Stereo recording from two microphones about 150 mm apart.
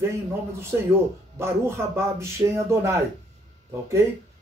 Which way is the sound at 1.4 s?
20° right (ahead or behind).